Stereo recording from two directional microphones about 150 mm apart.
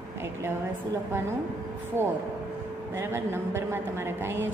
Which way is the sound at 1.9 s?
15° right (ahead or behind).